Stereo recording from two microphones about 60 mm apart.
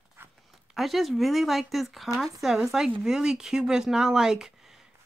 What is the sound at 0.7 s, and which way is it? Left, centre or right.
Speech, centre.